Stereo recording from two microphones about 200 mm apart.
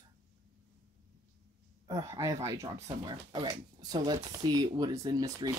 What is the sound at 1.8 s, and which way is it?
Speech, 15° right (ahead or behind).